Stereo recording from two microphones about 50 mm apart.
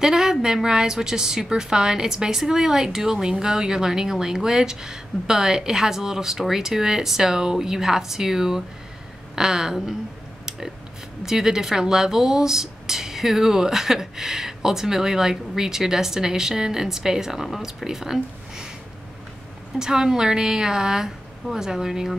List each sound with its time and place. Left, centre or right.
0.0 s a woman's voice: centre
11.2 s a woman's voice: centre
19.8 s a woman's voice: centre